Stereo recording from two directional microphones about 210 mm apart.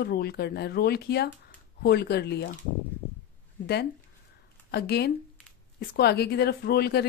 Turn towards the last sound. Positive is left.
turn(degrees=50)  # may be behind; listen again after turning